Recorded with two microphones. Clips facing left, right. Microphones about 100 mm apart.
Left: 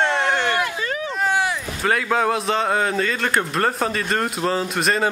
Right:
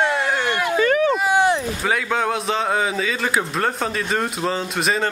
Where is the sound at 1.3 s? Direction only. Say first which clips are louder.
Right 4 dB; 25° right (ahead or behind).